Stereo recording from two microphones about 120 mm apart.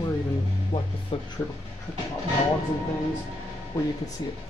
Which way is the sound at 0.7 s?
40° left (ahead or behind).